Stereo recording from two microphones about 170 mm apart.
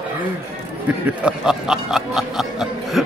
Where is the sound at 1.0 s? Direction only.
5° right (ahead or behind).